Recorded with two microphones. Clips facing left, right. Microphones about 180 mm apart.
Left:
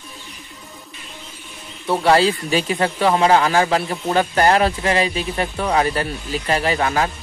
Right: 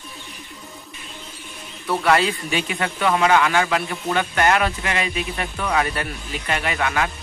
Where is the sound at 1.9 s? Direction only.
30° left (ahead or behind).